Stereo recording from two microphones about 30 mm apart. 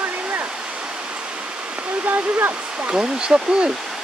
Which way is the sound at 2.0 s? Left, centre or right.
Right.